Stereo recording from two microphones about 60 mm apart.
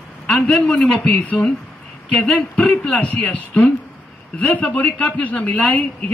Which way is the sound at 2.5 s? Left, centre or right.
Centre.